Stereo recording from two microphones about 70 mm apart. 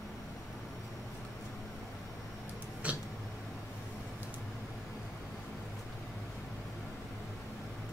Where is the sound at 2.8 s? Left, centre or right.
Centre.